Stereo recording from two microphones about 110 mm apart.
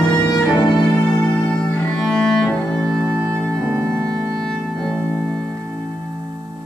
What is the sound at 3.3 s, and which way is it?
Music, 10° left (ahead or behind).